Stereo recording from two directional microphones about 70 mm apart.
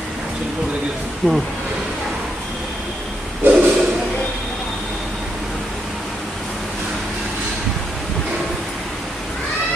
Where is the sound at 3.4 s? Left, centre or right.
Right.